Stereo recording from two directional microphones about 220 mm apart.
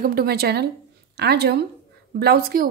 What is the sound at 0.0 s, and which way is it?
A woman's voice, 45° right (ahead or behind).